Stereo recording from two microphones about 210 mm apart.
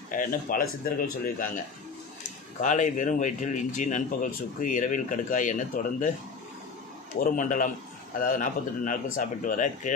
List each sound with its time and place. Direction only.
0.1 s speech: 40° left (ahead or behind)
2.6 s speech: 35° left (ahead or behind)
7.2 s speech: 40° left (ahead or behind)